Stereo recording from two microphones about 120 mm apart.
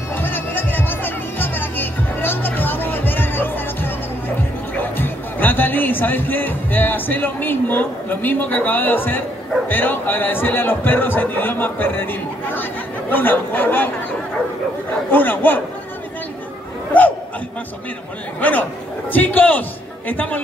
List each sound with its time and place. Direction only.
0.1 s music: 15° left (ahead or behind)
4.7 s a man's voice: 15° left (ahead or behind)
15.0 s a man's voice: 15° left (ahead or behind)
18.4 s a man's voice: 15° left (ahead or behind)